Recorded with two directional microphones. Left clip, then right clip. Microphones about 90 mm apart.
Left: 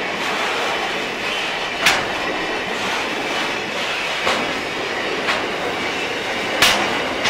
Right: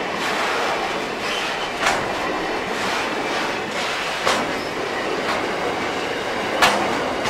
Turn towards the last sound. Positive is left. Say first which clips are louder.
# left 1 dB
turn(degrees=40)  # may be behind; listen again after turning